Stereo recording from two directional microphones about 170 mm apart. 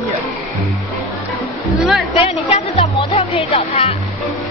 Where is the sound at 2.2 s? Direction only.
35° left (ahead or behind).